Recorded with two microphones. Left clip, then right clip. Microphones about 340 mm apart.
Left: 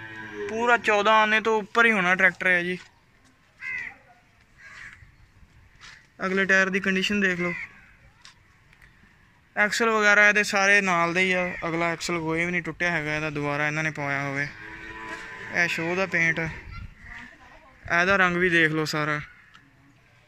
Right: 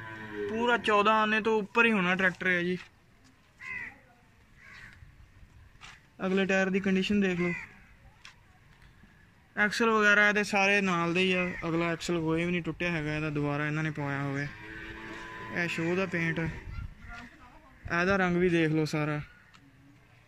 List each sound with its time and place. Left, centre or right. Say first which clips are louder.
0.6 s speech: left 5 dB; centre
5.8 s a man's voice: left 6 dB; centre
9.6 s speech: left 4 dB; centre
15.5 s speech: left 7 dB; centre
17.8 s speech: left 7 dB; centre